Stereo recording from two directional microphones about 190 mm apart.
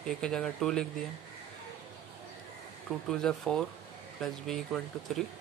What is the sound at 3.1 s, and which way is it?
Speech, 5° left (ahead or behind).